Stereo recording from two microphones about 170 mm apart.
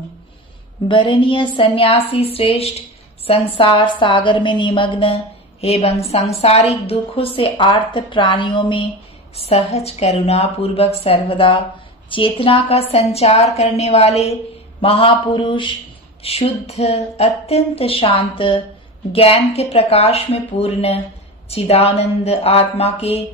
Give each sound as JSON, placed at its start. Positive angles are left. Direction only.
{"t": 0.8, "sound": "a woman's voice", "side_deg": 30}